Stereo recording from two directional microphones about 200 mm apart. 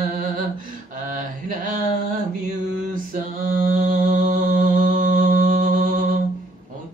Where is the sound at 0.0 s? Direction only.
45° right (ahead or behind).